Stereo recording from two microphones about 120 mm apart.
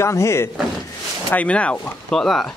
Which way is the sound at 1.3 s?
10° left (ahead or behind).